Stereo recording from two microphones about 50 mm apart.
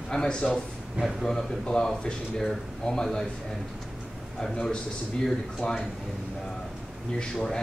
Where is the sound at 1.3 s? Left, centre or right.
Centre.